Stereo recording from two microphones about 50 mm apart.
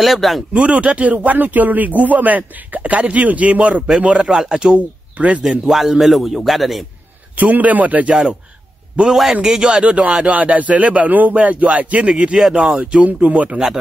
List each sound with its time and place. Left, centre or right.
0.0 s a man's voice: centre
0.5 s a man's voice: right
4.7 s speech: right
5.4 s a man's voice: centre
7.3 s a man's voice: right
9.0 s a man's voice: centre
13.0 s a man's voice: right